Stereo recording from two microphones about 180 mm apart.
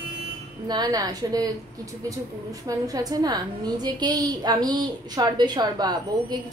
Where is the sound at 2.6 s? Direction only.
20° right (ahead or behind).